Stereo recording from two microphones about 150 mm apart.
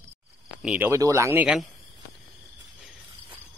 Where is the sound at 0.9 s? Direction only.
20° right (ahead or behind).